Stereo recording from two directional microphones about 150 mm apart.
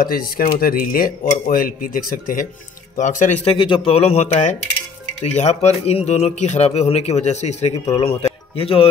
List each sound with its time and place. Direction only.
0.0 s speech: 75° left (ahead or behind); by 3.3 s 55° left (ahead or behind)
3.4 s speech: 35° left (ahead or behind)